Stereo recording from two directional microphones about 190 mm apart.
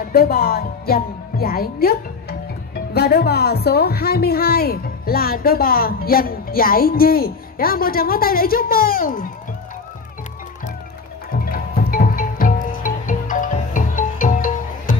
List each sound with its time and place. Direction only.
0.0 s a woman's voice: 50° left (ahead or behind)
11.4 s music: 50° left (ahead or behind)